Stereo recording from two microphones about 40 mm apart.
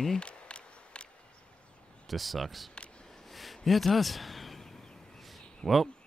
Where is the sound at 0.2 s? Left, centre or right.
Left.